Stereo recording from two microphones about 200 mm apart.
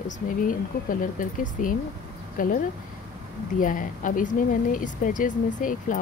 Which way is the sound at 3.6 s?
45° left (ahead or behind).